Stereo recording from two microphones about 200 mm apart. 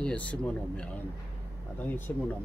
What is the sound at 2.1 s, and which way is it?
Speech, 10° left (ahead or behind).